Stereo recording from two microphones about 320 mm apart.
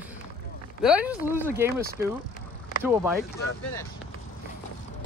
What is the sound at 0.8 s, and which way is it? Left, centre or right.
Speech, centre.